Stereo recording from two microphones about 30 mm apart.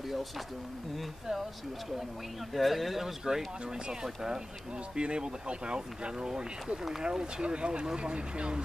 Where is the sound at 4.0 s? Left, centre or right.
Right.